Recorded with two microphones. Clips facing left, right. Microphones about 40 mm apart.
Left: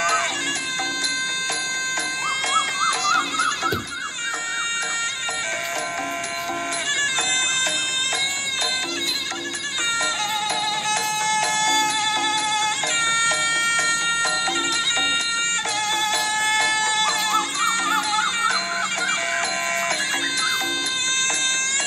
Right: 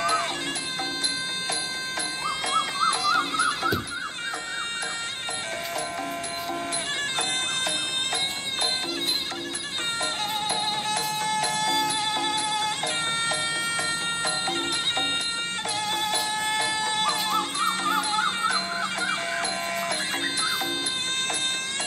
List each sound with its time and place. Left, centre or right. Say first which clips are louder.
2.5 s music: left 1 dB; centre
12.5 s a sound: left 5 dB; left
16.4 s chicken: left 7 dB; left
17.4 s music: left 4 dB; left